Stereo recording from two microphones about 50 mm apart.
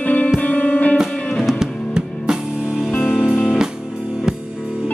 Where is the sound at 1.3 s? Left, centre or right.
Centre.